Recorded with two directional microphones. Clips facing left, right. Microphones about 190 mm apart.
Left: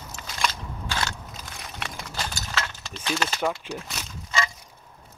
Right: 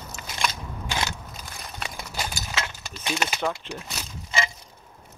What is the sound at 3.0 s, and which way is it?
Speech, 15° right (ahead or behind).